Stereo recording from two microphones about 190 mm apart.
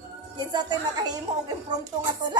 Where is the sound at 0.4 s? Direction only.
20° right (ahead or behind).